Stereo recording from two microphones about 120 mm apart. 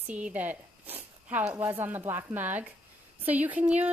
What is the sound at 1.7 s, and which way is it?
A woman's voice, 15° right (ahead or behind).